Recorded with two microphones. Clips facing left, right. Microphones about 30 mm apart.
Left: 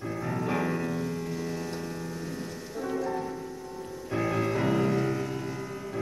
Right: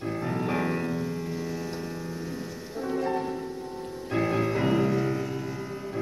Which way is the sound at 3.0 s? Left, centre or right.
Right.